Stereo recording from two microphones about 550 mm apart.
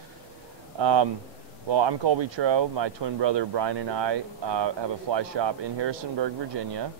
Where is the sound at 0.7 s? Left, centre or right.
Right.